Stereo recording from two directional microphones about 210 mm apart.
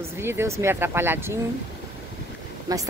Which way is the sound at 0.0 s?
10° right (ahead or behind).